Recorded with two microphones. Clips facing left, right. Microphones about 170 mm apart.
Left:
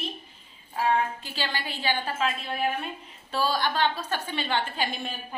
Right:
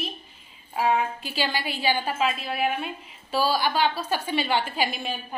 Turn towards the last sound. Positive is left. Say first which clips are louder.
# right 3 dB
turn(degrees=-10)  # may be behind; listen again after turning